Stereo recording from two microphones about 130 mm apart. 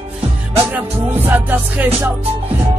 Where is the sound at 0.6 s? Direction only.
15° right (ahead or behind).